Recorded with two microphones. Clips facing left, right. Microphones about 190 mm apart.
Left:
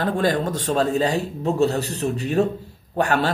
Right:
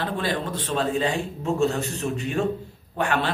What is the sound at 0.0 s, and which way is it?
A man's voice, 45° left (ahead or behind).